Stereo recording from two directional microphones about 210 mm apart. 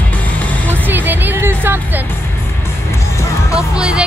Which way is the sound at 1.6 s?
10° right (ahead or behind).